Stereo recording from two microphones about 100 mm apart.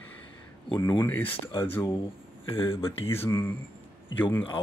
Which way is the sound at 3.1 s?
25° left (ahead or behind).